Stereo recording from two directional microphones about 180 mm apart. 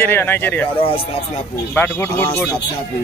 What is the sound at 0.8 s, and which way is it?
Speech, 30° left (ahead or behind).